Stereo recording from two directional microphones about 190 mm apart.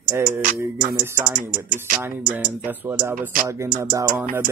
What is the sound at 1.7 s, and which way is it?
Speech, 45° right (ahead or behind).